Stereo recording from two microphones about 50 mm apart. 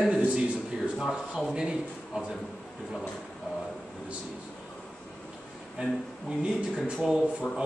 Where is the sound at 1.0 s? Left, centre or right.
Centre.